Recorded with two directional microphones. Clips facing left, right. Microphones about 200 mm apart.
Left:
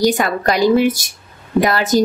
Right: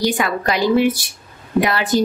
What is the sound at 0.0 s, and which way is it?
A woman's voice, 45° left (ahead or behind).